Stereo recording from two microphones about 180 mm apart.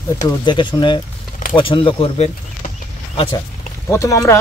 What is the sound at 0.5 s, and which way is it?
Speech, 25° left (ahead or behind).